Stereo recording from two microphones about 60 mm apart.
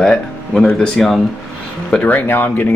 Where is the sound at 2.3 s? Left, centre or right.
Left.